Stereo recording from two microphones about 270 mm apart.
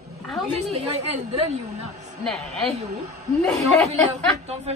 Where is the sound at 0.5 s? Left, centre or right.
Right.